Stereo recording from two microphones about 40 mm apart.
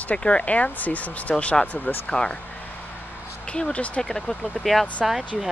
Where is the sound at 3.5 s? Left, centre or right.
Left.